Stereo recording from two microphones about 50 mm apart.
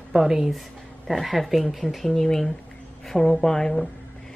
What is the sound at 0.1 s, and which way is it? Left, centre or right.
Speech, centre.